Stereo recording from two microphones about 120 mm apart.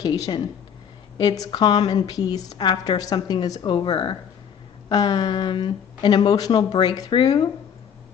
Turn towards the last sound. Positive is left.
turn(degrees=35)  # may be behind; listen again after turning